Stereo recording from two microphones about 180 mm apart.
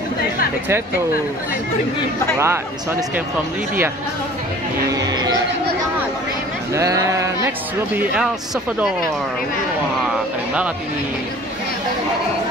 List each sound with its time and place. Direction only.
2.3 s speech: 15° right (ahead or behind)
4.9 s music: 20° right (ahead or behind)
6.7 s speech: 15° right (ahead or behind)